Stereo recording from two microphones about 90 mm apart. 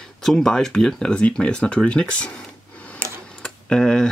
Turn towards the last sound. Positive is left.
turn(degrees=5)  # may be behind; listen again after turning